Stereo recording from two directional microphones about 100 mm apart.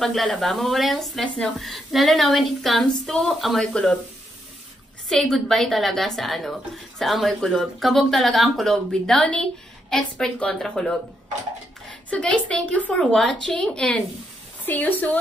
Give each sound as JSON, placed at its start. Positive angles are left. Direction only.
{"t": 0.0, "sound": "a woman's voice", "side_deg": 5}
{"t": 5.1, "sound": "a woman's voice", "side_deg": 5}